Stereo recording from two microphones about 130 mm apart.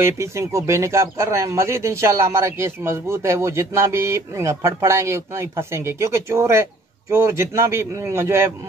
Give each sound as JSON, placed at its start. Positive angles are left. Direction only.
{"t": 0.0, "sound": "a man's voice", "side_deg": -20}